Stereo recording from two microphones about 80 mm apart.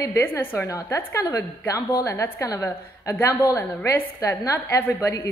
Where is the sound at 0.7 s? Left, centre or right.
Left.